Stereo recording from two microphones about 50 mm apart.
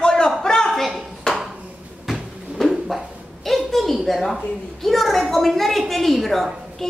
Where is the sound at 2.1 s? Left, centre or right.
Centre.